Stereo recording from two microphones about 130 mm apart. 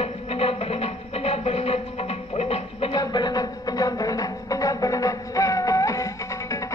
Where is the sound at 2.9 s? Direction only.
35° left (ahead or behind).